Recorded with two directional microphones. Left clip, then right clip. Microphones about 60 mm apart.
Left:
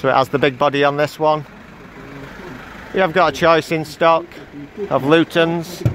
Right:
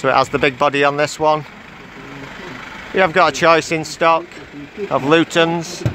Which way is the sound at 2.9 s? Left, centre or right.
Centre.